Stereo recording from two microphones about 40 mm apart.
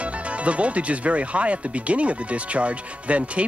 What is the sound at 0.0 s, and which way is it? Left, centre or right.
Speech, right.